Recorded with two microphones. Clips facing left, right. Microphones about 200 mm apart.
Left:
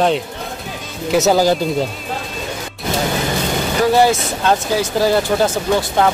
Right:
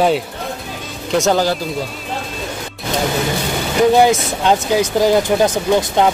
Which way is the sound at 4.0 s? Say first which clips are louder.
Right 1 dB; 15° right (ahead or behind).